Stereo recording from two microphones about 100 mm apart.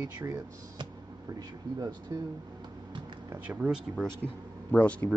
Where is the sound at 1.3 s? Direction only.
40° right (ahead or behind).